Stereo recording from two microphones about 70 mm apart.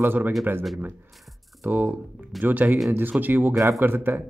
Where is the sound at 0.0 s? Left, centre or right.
Right.